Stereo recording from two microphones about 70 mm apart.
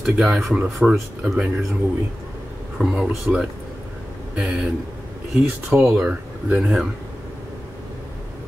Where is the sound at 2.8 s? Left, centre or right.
Centre.